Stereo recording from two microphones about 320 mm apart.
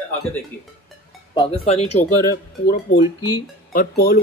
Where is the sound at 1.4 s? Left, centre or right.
Centre.